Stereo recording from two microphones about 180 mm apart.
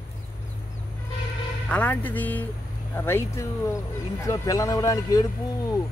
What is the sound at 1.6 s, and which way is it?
Speech, 10° left (ahead or behind).